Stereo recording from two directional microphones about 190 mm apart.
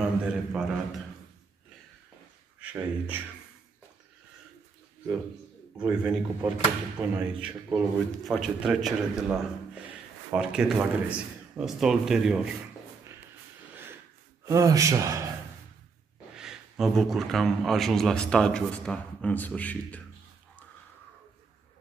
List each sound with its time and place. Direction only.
0.0 s a sound: 5° right (ahead or behind)
2.6 s speech: 5° right (ahead or behind)
5.8 s a man's voice: 5° right (ahead or behind)
14.4 s a man's voice: 15° right (ahead or behind)
16.3 s a man's voice: centre (ahead or behind)